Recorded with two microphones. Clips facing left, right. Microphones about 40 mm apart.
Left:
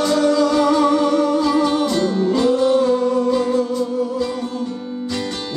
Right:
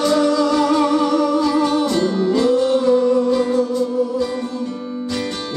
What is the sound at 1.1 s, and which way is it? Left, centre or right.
Music, left.